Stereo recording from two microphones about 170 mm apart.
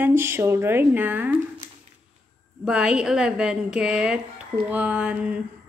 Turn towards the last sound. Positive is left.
turn(degrees=-5)  # may be behind; listen again after turning